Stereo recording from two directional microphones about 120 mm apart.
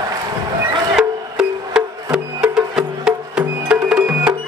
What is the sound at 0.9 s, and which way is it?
Music, 5° right (ahead or behind).